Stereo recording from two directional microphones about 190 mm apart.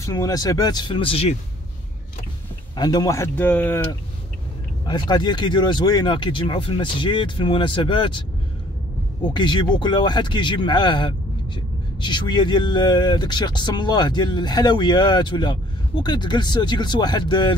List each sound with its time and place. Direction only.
0.0 s speech: 20° left (ahead or behind)
2.7 s speech: 20° left (ahead or behind)
4.8 s speech: 25° left (ahead or behind)
9.3 s speech: 25° left (ahead or behind)